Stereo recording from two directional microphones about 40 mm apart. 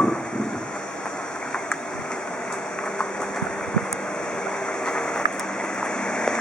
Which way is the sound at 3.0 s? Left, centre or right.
Centre.